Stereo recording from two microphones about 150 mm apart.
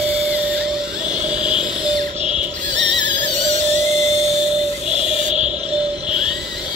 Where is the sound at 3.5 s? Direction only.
50° right (ahead or behind).